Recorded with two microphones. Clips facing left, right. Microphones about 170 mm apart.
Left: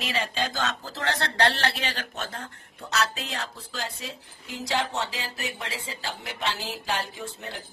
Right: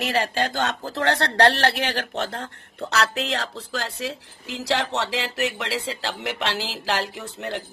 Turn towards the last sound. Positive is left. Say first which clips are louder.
# right 6 dB
turn(degrees=-70)  # may be behind; listen again after turning